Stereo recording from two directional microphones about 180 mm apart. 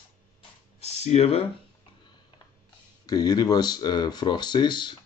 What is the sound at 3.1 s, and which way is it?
Speech, 20° left (ahead or behind).